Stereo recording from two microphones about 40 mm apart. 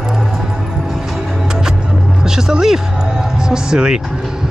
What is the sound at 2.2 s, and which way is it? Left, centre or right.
Music, centre.